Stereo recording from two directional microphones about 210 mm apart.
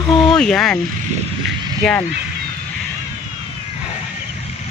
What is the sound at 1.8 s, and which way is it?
Speech, 5° left (ahead or behind).